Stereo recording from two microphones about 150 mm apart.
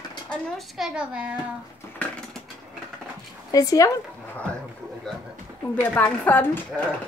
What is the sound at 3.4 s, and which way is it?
Speech, 25° left (ahead or behind).